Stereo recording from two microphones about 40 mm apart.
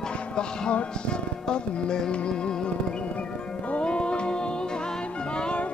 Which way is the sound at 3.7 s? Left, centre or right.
Left.